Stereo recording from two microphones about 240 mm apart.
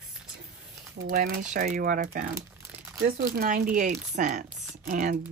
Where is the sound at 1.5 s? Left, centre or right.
Right.